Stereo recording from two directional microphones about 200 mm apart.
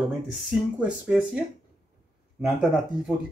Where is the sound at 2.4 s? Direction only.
Centre (ahead or behind).